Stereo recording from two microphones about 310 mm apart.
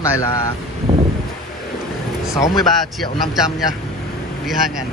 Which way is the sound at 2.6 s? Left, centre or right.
Centre.